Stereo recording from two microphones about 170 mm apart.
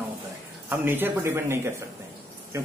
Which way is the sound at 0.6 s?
10° right (ahead or behind).